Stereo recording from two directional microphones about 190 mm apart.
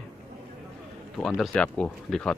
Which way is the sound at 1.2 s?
Centre (ahead or behind).